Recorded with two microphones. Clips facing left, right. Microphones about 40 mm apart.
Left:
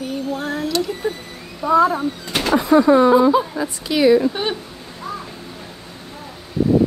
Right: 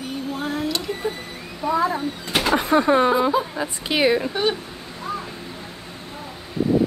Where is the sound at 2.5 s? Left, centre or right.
Right.